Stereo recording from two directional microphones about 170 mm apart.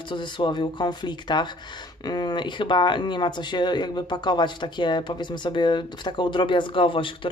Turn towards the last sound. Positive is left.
turn(degrees=30)  # may be behind; listen again after turning